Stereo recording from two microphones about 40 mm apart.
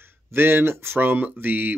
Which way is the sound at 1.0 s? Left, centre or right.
Right.